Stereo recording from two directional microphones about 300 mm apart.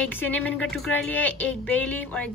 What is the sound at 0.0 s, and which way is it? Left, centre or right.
A woman's voice, centre.